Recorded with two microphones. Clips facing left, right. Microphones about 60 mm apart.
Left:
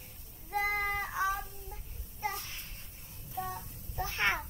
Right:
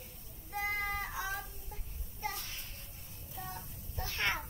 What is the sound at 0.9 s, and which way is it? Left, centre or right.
Child singing, left.